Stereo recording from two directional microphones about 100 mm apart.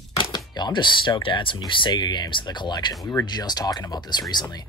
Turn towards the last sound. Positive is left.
turn(degrees=45)  # may be behind; listen again after turning